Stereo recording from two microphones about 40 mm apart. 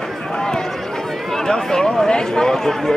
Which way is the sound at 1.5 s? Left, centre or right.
Centre.